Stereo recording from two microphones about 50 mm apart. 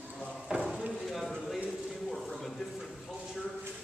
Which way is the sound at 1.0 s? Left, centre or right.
Centre.